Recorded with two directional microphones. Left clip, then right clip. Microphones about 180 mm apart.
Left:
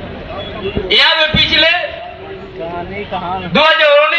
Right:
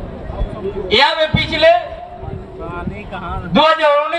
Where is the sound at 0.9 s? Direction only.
90° right.